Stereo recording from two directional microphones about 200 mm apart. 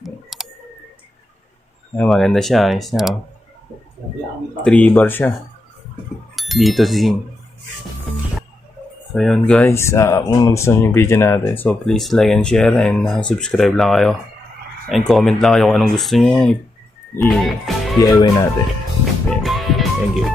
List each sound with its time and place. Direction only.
0.0 s clicking: centre (ahead or behind)
2.0 s speech: centre (ahead or behind)
4.6 s speech: 5° left (ahead or behind)
6.3 s speech: centre (ahead or behind)
9.1 s speech: centre (ahead or behind)
17.9 s speech: 15° left (ahead or behind)
19.3 s music: centre (ahead or behind)